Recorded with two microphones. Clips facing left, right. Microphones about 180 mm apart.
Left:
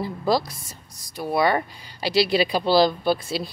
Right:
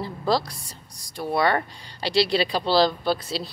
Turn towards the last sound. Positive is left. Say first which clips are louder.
# left 2 dB
turn(degrees=15)  # may be behind; listen again after turning